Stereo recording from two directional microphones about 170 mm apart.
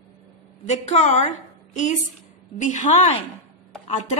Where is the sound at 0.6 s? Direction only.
40° left (ahead or behind).